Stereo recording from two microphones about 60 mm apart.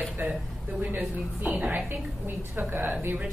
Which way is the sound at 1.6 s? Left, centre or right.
Right.